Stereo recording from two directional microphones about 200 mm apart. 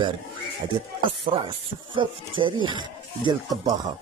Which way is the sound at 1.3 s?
25° right (ahead or behind).